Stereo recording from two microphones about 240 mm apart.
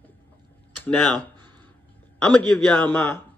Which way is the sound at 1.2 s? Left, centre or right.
Centre.